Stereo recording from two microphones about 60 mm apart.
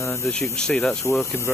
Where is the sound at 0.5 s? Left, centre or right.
Centre.